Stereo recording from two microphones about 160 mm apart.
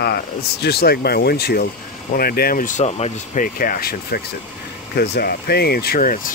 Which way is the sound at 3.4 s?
65° left (ahead or behind).